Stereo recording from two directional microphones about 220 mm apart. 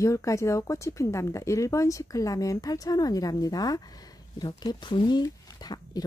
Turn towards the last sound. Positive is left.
turn(degrees=15)  # may be behind; listen again after turning